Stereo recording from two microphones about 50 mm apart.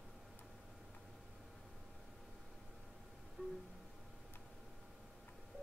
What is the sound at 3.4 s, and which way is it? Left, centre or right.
Music, left.